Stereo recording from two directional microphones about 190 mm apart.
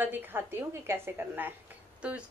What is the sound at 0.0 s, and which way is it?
A woman's voice, 10° right (ahead or behind).